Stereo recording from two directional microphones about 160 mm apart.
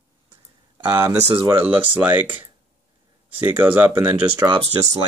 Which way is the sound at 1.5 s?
10° right (ahead or behind).